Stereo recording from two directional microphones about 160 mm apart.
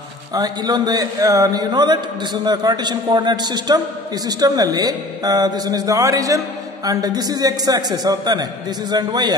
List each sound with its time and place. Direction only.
0.3 s a man's voice: 25° right (ahead or behind)